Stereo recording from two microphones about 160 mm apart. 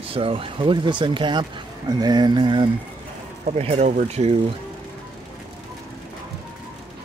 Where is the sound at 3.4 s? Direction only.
40° right (ahead or behind).